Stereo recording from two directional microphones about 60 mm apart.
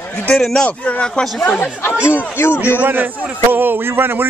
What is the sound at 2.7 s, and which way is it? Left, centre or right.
A man's voice, right.